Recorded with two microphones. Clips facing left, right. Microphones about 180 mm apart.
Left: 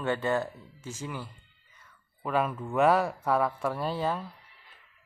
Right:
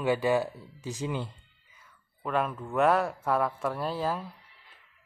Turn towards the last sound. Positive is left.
turn(degrees=0)  # may be behind; listen again after turning